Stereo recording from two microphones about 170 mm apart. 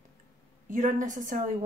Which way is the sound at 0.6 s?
50° right (ahead or behind).